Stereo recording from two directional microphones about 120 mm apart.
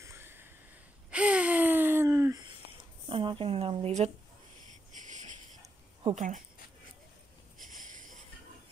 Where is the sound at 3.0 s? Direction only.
45° right (ahead or behind); by 4.0 s 65° right (ahead or behind).